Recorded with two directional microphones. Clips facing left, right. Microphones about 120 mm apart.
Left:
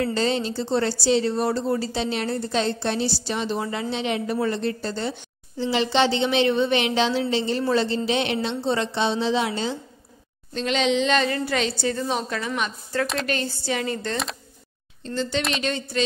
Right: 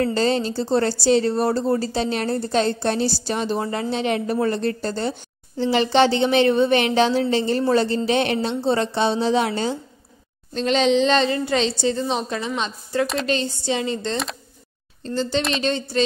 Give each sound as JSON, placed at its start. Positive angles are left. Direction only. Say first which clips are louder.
{"t": 0.0, "sound": "speech", "louder": "right 3 dB", "side_deg": -40}
{"t": 10.5, "sound": "a woman's voice", "louder": "right 4 dB", "side_deg": -35}
{"t": 13.0, "sound": "a woman's voice", "louder": "right 3 dB", "side_deg": 0}
{"t": 13.3, "sound": "a woman's voice", "louder": "right 3 dB", "side_deg": -25}
{"t": 15.0, "sound": "speech", "louder": "right 3 dB", "side_deg": -35}